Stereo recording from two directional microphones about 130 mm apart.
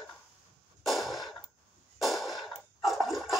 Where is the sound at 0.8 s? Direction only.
Centre (ahead or behind).